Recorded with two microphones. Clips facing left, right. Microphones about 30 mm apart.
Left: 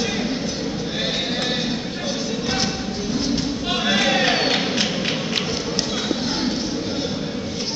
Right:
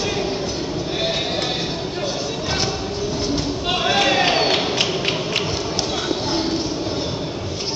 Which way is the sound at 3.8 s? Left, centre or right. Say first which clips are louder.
Right 1 dB; right.